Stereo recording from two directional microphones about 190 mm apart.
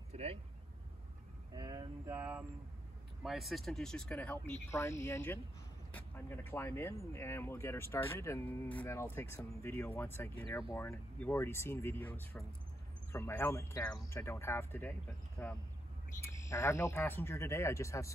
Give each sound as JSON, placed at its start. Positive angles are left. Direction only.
{"t": 0.1, "sound": "vehicle", "side_deg": -35}
{"t": 1.5, "sound": "a sound", "side_deg": -20}
{"t": 3.3, "sound": "speech", "side_deg": 0}